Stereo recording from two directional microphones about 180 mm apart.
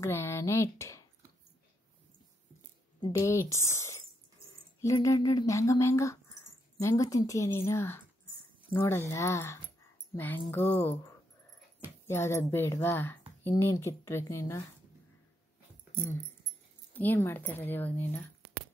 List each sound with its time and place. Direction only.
0.0 s speech: 15° left (ahead or behind)
3.0 s speech: 15° left (ahead or behind)
16.9 s speech: 10° left (ahead or behind)